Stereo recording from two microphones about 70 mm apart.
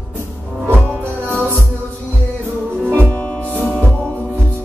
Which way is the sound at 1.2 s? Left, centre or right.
Right.